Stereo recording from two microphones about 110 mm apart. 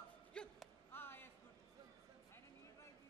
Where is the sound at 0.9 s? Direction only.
20° left (ahead or behind).